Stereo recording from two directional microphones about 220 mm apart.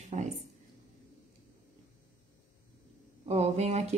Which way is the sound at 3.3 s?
30° right (ahead or behind).